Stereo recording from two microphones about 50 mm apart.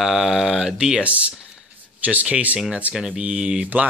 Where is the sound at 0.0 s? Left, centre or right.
Centre.